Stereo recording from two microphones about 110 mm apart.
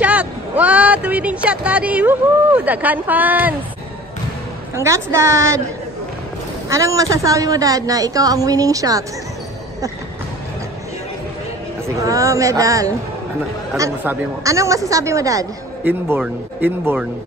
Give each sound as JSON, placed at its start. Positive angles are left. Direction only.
{"t": 0.0, "sound": "speech", "side_deg": -10}
{"t": 4.7, "sound": "speech", "side_deg": -25}
{"t": 6.7, "sound": "a woman's voice", "side_deg": -30}
{"t": 12.0, "sound": "speech", "side_deg": -30}
{"t": 14.4, "sound": "a woman's voice", "side_deg": -30}
{"t": 15.8, "sound": "speech", "side_deg": -15}